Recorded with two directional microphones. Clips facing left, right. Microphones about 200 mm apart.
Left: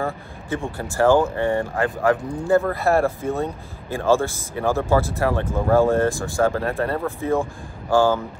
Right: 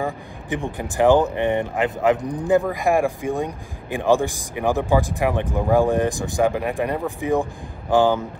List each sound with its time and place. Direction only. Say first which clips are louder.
0.0 s speech: even; 15° right (ahead or behind)